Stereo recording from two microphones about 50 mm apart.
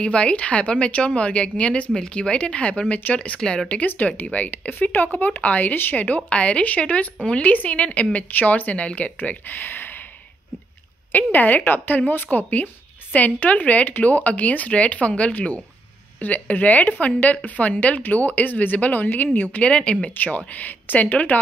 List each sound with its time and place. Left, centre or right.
0.0 s speech: left
3.8 s speech: left
11.3 s speech: left
19.6 s speech: left
20.2 s speech: left